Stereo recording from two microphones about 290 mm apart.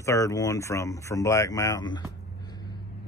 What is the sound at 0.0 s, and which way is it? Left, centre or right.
A man's voice, centre.